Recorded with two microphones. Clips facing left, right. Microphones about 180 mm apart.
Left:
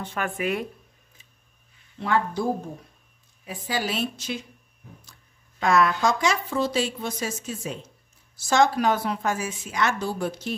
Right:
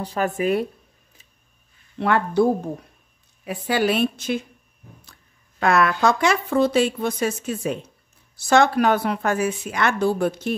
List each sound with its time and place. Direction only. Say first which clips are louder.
0.0 s speech: right 6 dB; 40° right (ahead or behind)
2.0 s speech: right 5 dB; 65° right (ahead or behind)
3.4 s speech: right 8 dB; 60° right (ahead or behind)
5.6 s speech: right 2 dB; 60° right (ahead or behind)